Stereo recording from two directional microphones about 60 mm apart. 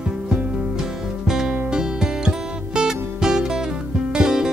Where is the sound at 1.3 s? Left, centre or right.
Centre.